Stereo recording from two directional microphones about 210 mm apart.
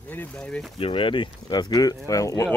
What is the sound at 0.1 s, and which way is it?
Speech, 5° left (ahead or behind).